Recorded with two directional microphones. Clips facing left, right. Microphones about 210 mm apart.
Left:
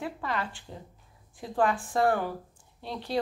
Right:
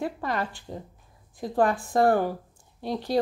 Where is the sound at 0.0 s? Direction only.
40° right (ahead or behind).